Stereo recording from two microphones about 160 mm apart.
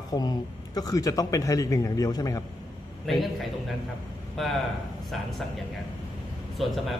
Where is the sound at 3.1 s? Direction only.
Centre (ahead or behind).